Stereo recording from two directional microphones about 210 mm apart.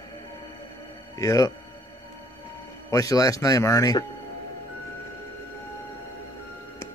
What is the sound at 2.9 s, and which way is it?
Speech, 15° left (ahead or behind).